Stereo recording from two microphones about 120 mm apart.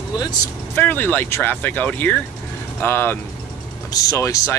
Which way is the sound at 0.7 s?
15° left (ahead or behind).